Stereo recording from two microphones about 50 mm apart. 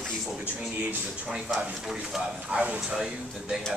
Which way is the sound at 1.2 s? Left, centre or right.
Centre.